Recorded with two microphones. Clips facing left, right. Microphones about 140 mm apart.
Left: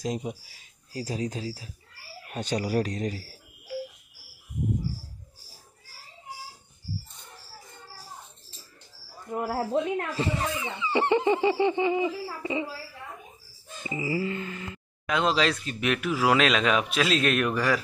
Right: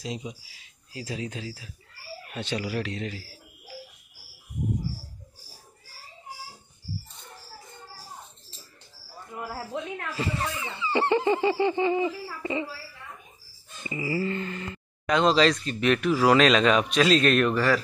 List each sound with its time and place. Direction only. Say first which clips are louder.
0.0 s speech: left 4 dB; 50° left (ahead or behind)
9.3 s speech: left 7 dB; 40° left (ahead or behind)
10.1 s speech: left 2 dB; 20° left (ahead or behind)
13.8 s speech: even; 20° left (ahead or behind)
14.2 s speech: right 2 dB; 5° left (ahead or behind)